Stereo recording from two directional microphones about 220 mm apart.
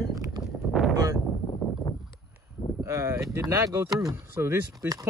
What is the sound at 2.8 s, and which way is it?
Speech, 15° right (ahead or behind).